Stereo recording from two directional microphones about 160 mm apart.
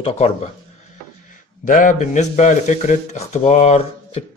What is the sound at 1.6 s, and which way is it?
Speech, 55° left (ahead or behind).